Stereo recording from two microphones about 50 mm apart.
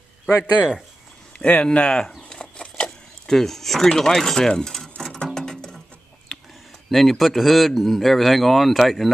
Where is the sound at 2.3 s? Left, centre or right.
Centre.